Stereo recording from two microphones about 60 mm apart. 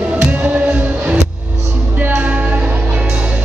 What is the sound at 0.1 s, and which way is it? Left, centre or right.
Music, right.